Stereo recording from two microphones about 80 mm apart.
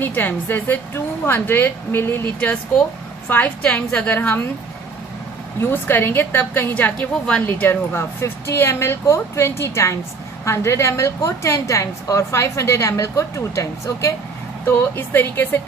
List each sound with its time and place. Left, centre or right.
0.0 s a woman's voice: left
5.6 s a woman's voice: left; by 7.4 s centre
7.4 s a woman's voice: left
14.7 s a woman's voice: left